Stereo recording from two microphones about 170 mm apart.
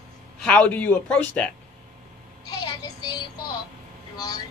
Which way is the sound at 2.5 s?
25° left (ahead or behind).